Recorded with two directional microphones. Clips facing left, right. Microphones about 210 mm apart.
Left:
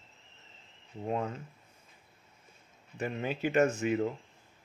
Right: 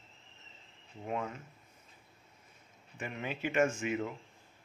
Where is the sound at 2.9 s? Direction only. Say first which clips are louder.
Left 5 dB; 40° left (ahead or behind).